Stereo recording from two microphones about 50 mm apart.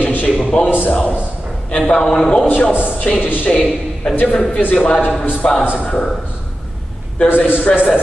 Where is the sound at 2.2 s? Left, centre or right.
Centre.